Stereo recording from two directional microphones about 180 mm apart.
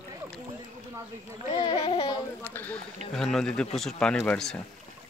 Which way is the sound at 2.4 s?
10° left (ahead or behind).